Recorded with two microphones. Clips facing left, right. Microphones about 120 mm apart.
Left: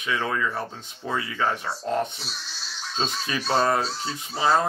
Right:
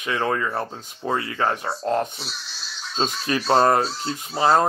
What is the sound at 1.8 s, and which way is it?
Speech, 50° right (ahead or behind).